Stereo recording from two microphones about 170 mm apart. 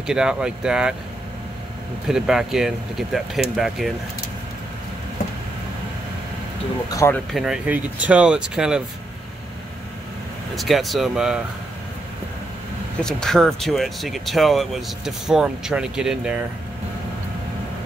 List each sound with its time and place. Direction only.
0.0 s speech: 5° right (ahead or behind)
2.0 s speech: 5° right (ahead or behind)
6.9 s speech: 20° left (ahead or behind)
7.3 s speech: 5° right (ahead or behind)
10.5 s speech: centre (ahead or behind)
13.0 s speech: 5° left (ahead or behind)